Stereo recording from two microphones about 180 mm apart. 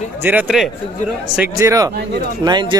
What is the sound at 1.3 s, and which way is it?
Speech, 15° right (ahead or behind).